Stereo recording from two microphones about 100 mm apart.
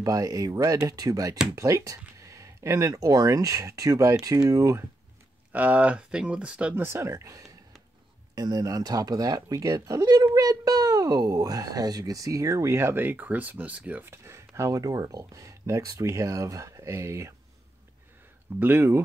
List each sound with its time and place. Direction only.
0.0 s speech: 35° right (ahead or behind)
5.5 s speech: 15° right (ahead or behind)
6.7 s speech: 25° right (ahead or behind)
18.6 s speech: 25° right (ahead or behind)